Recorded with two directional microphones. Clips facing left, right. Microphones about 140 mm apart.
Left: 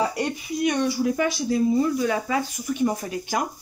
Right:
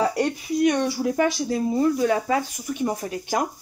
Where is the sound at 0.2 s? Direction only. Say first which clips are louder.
Right 4 dB; 40° right (ahead or behind).